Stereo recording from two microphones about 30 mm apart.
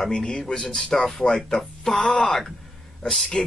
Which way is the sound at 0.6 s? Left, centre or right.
Centre.